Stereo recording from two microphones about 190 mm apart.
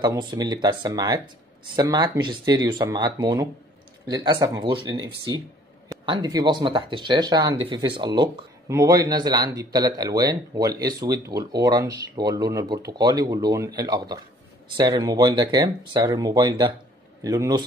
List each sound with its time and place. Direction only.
0.0 s speech: 20° right (ahead or behind)